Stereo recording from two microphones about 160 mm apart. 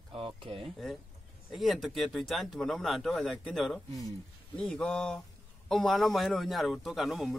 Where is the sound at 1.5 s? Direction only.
Centre (ahead or behind).